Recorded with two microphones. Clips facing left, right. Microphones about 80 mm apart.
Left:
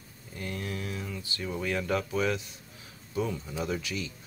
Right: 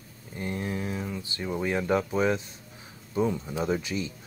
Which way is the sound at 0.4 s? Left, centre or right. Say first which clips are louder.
Right 4 dB; right.